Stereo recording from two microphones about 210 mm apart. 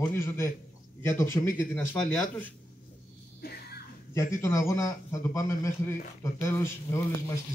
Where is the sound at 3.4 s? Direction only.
50° left (ahead or behind).